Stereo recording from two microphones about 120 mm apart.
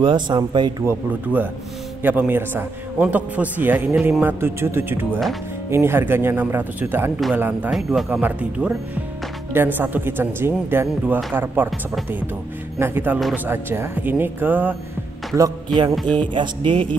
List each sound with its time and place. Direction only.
0.0 s speech: 40° right (ahead or behind)
0.8 s a man's voice: 15° right (ahead or behind)
7.7 s a man's voice: 5° right (ahead or behind)
12.7 s a man's voice: 20° right (ahead or behind)
15.9 s a man's voice: centre (ahead or behind)
16.2 s speech: 40° right (ahead or behind)